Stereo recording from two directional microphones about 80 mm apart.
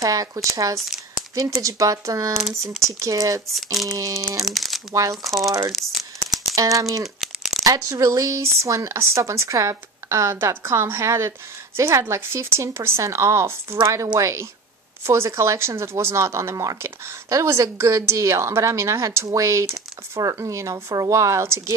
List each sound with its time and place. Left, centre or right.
0.0 s speech: right
2.4 s speech: centre
2.8 s speech: right
3.5 s speech: centre
3.9 s speech: right
4.5 s crumpling: centre
5.1 s speech: centre
5.7 s crumpling: centre
6.5 s speech: right